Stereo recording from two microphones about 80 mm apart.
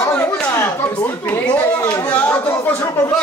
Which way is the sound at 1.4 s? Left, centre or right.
Centre.